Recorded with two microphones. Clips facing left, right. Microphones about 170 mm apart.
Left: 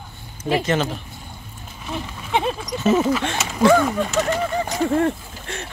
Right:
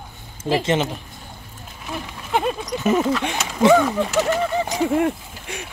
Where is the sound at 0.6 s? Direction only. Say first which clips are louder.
Right 1 dB; 20° right (ahead or behind).